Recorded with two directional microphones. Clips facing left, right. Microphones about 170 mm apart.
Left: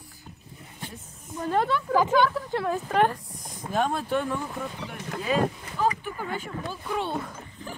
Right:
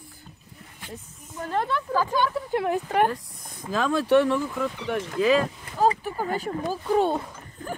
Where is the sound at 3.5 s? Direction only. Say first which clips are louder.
Right 2 dB; 90° right.